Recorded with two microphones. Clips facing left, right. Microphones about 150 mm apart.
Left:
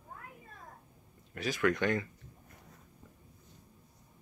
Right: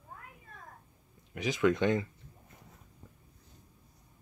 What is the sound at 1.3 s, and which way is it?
Speech, 20° right (ahead or behind).